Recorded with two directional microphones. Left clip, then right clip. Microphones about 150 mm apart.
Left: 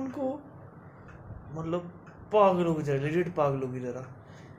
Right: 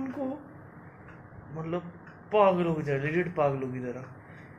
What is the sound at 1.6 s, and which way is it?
Speech, 15° left (ahead or behind).